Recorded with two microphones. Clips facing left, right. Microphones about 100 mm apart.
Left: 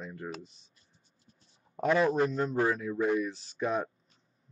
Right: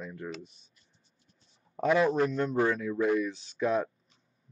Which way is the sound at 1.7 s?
Centre (ahead or behind).